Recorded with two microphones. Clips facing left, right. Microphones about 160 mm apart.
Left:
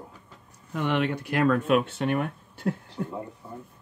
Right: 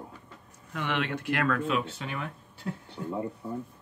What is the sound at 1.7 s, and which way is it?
Speech, 60° left (ahead or behind).